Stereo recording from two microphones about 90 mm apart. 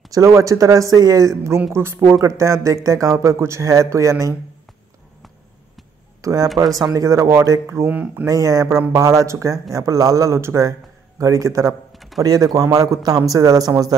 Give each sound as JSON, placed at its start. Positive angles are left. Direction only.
{"t": 0.1, "sound": "a woman's voice", "side_deg": -35}
{"t": 6.2, "sound": "speech", "side_deg": -40}
{"t": 7.9, "sound": "speech", "side_deg": -15}
{"t": 8.3, "sound": "speech", "side_deg": -40}
{"t": 11.9, "sound": "a sound", "side_deg": 0}
{"t": 12.2, "sound": "speech", "side_deg": -40}